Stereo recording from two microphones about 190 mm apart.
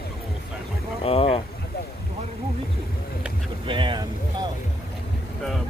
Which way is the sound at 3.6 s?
25° right (ahead or behind).